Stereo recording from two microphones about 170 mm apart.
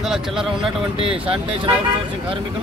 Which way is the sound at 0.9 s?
30° right (ahead or behind).